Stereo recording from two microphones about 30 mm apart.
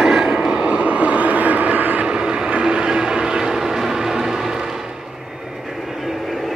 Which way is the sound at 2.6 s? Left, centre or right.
Right.